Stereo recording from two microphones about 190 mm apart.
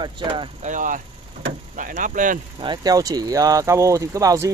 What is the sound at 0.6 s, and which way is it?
Speech, 40° right (ahead or behind).